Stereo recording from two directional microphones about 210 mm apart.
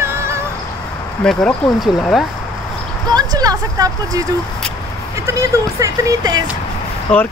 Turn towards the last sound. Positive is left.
turn(degrees=5)  # may be behind; listen again after turning